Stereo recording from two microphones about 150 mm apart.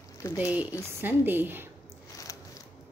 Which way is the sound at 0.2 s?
20° left (ahead or behind).